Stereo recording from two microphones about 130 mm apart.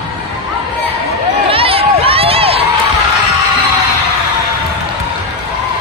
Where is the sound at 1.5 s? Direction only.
45° right (ahead or behind).